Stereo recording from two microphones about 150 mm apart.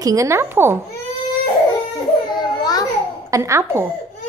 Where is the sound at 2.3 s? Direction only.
30° left (ahead or behind).